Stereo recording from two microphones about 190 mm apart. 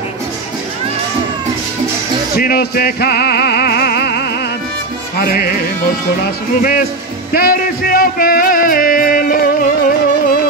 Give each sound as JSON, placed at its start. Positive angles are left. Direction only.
{"t": 2.3, "sound": "music", "side_deg": 55}
{"t": 7.3, "sound": "music", "side_deg": 50}